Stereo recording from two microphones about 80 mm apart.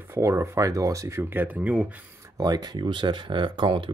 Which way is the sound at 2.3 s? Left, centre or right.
Right.